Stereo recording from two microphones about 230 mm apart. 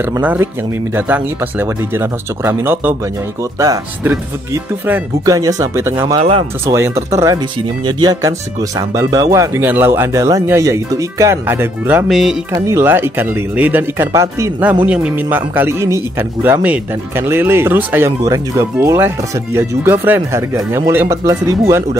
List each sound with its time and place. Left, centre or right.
0.2 s speech: centre
6.1 s speech: right
6.6 s speech: centre
12.5 s speech: centre